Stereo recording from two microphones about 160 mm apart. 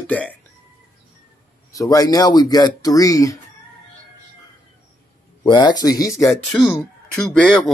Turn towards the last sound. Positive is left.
turn(degrees=5)  # may be behind; listen again after turning